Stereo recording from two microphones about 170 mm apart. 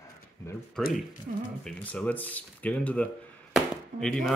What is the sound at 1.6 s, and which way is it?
Speech, 5° left (ahead or behind).